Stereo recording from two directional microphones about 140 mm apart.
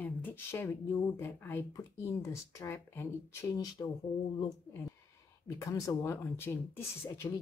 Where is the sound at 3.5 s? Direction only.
25° left (ahead or behind).